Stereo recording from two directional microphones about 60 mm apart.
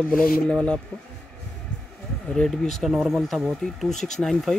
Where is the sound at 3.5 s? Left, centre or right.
Centre.